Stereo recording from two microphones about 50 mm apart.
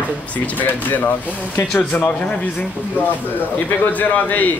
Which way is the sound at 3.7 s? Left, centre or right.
Left.